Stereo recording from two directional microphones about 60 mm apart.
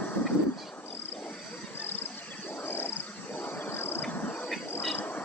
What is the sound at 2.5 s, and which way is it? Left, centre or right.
Wild animals, left.